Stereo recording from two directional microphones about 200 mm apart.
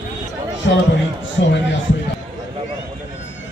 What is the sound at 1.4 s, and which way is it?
Speech, 65° left (ahead or behind).